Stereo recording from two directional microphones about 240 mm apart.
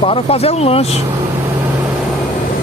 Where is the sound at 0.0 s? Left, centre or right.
Left.